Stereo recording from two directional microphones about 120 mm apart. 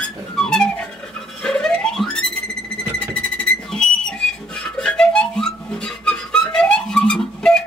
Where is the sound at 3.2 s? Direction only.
5° left (ahead or behind).